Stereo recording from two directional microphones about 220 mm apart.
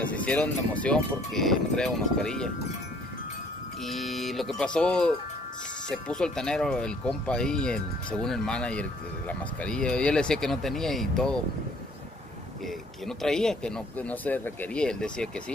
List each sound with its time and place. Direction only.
0.0 s speech: 5° left (ahead or behind)
3.8 s speech: centre (ahead or behind)
13.2 s speech: centre (ahead or behind)